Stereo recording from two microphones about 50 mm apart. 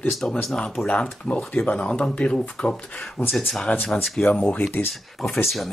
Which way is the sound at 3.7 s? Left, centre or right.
Left.